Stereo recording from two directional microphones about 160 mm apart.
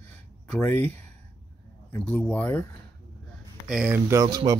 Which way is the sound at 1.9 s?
10° left (ahead or behind).